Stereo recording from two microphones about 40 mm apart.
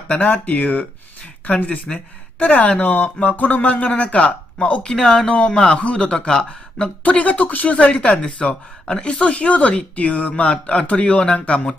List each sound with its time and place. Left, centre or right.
0.1 s speech: left
1.7 s speech: left
4.8 s speech: centre
6.1 s speech: centre
7.0 s speech: left
7.7 s speech: left
8.4 s speech: centre